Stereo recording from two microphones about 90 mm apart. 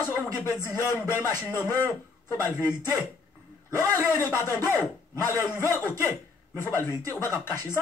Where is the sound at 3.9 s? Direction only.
25° left (ahead or behind).